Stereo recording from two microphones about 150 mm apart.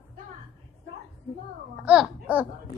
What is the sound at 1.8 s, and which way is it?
Speech, 5° right (ahead or behind).